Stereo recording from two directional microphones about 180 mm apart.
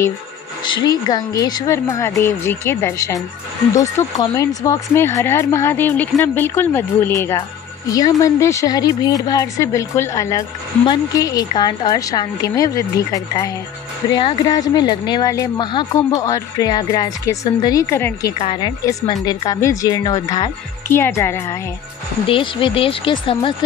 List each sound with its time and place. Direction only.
0.7 s speech: 25° left (ahead or behind)
18.4 s speech: 25° left (ahead or behind)
22.2 s speech: 30° left (ahead or behind)